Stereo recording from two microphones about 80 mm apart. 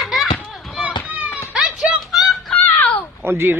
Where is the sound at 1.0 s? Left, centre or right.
Centre.